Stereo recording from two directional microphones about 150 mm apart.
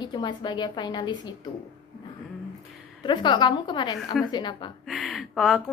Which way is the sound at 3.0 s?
30° left (ahead or behind).